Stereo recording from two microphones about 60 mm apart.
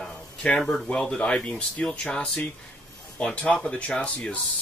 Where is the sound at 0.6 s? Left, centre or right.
Centre.